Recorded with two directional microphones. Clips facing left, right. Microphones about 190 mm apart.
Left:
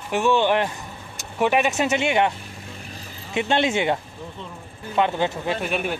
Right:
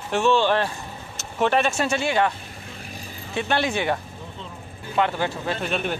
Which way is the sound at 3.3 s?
20° left (ahead or behind).